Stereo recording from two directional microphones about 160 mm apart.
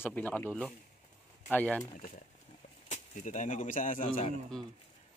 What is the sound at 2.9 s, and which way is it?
Speech, 50° left (ahead or behind).